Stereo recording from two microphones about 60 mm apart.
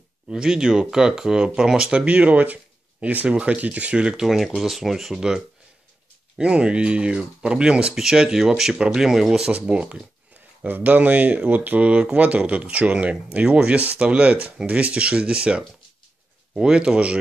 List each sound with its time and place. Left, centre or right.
0.3 s speech: centre
9.5 s speech: centre